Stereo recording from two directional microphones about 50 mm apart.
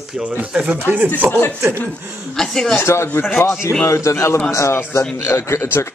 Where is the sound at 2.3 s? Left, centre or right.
Centre.